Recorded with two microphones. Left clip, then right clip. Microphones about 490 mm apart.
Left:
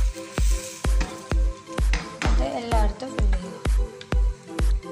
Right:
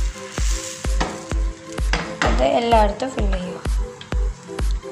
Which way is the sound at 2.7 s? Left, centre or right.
Right.